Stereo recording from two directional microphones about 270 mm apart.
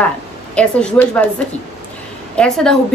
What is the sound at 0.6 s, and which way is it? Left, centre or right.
Speech, centre.